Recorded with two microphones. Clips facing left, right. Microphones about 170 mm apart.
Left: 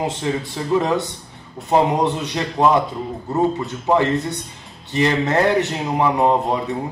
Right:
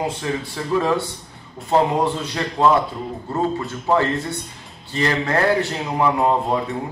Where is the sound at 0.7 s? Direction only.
20° left (ahead or behind).